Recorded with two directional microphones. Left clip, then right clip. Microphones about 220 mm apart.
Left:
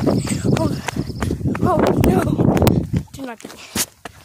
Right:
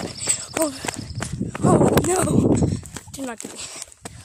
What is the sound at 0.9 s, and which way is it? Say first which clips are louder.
Clip-clop: left 6 dB; 15° left (ahead or behind).